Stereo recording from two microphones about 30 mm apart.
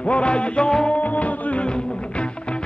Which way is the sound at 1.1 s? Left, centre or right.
Left.